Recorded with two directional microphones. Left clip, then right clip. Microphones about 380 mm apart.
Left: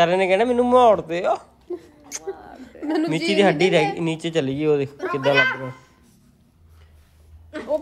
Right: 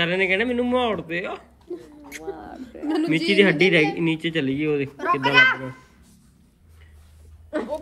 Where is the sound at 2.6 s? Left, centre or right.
Left.